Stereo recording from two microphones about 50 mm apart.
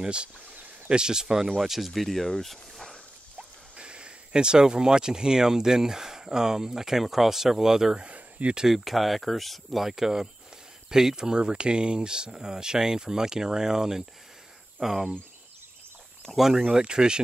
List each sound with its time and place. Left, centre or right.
0.0 s speech: centre
3.3 s speech: right
8.0 s a sound: right
8.5 s speech: centre
16.3 s speech: centre